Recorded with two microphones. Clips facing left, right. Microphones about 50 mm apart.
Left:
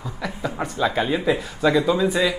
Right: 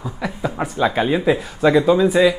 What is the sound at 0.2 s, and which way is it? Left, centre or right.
Speech, centre.